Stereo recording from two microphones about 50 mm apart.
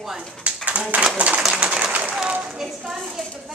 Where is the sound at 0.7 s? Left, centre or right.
Right.